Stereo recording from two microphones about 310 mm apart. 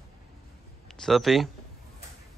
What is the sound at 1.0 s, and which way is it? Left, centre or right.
Speech, centre.